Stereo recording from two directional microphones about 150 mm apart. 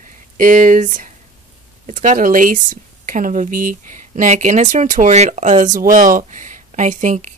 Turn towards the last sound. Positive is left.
turn(degrees=-60)  # may be behind; listen again after turning